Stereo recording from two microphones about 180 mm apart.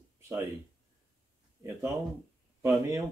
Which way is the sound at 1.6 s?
15° right (ahead or behind).